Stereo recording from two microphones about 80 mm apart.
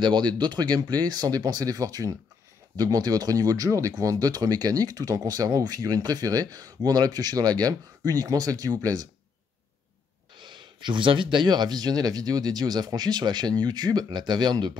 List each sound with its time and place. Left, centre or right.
0.0 s speech: right
10.3 s speech: right